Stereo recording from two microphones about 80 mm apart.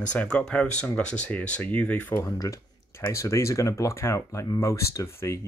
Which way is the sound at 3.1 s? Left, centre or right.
Left.